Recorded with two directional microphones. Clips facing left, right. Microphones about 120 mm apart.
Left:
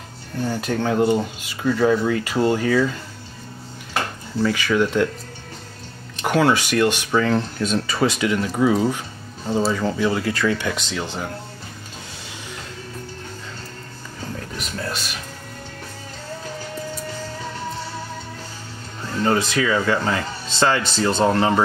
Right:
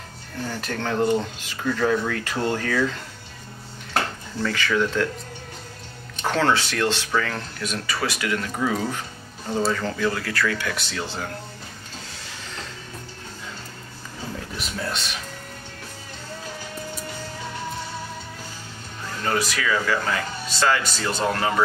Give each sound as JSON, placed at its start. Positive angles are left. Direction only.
{"t": 0.5, "sound": "speech", "side_deg": 10}
{"t": 6.2, "sound": "speech", "side_deg": 15}
{"t": 14.6, "sound": "speech", "side_deg": 0}
{"t": 19.2, "sound": "speech", "side_deg": 25}